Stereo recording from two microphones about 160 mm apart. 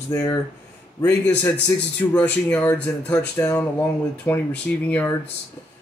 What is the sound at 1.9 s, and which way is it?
Speech, 10° left (ahead or behind).